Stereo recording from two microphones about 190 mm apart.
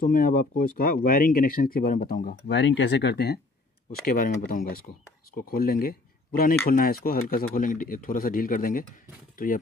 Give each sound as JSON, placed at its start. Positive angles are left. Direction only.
{"t": 0.0, "sound": "speech", "side_deg": 45}